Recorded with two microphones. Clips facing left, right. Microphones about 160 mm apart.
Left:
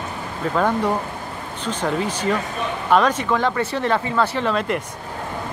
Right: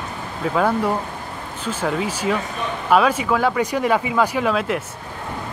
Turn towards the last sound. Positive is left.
turn(degrees=-5)  # may be behind; listen again after turning